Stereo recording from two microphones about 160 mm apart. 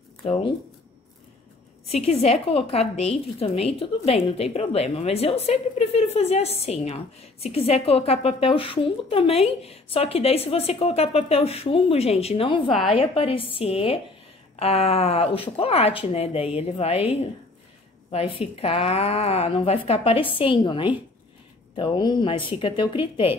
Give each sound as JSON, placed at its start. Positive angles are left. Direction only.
{"t": 0.2, "sound": "speech", "side_deg": 40}
{"t": 1.9, "sound": "a woman's voice", "side_deg": 40}
{"t": 12.7, "sound": "a woman's voice", "side_deg": 0}
{"t": 13.0, "sound": "a woman's voice", "side_deg": 35}
{"t": 18.1, "sound": "a woman's voice", "side_deg": 40}